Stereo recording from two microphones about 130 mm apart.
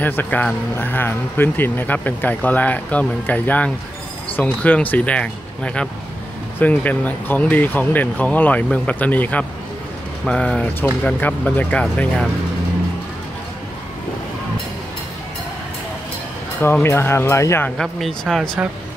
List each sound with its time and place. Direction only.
0.0 s speech: 15° left (ahead or behind)
16.8 s speech: 20° left (ahead or behind)
17.7 s speech: centre (ahead or behind)